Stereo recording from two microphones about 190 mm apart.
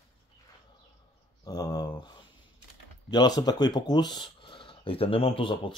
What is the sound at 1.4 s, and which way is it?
Speech, 20° left (ahead or behind).